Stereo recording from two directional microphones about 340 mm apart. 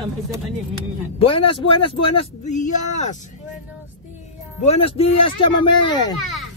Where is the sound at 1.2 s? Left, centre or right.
Centre.